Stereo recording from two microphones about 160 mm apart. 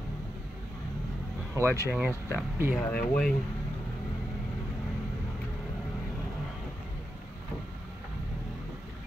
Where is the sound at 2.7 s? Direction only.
10° left (ahead or behind).